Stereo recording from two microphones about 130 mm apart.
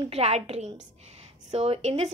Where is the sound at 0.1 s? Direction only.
55° right (ahead or behind).